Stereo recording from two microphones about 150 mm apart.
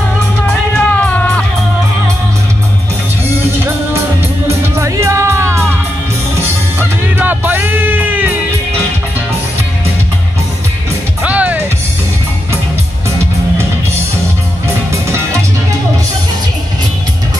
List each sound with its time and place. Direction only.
0.5 s music: 10° left (ahead or behind)
4.5 s music: 20° right (ahead or behind)
6.8 s music: 10° right (ahead or behind)
11.2 s music: 10° right (ahead or behind)